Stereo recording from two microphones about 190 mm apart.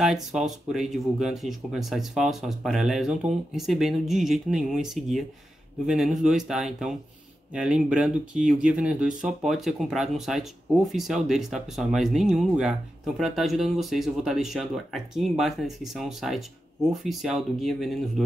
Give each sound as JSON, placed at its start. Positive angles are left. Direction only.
{"t": 0.0, "sound": "speech", "side_deg": 0}